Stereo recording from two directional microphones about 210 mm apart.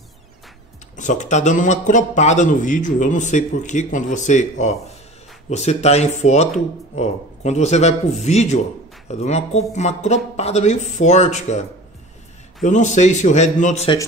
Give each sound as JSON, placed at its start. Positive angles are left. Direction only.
{"t": 0.9, "sound": "a man's voice", "side_deg": 35}
{"t": 12.6, "sound": "a man's voice", "side_deg": 35}